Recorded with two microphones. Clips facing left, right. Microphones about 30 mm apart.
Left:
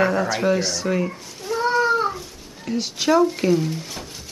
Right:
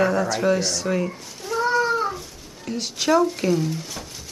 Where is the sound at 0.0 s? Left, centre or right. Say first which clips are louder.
Left 1 dB; centre.